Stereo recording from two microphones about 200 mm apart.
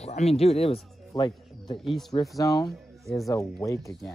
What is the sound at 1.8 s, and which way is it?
Speech, centre (ahead or behind).